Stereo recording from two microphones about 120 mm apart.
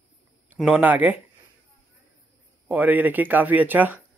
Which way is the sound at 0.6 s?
15° right (ahead or behind).